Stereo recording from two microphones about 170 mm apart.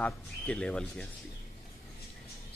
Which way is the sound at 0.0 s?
5° left (ahead or behind).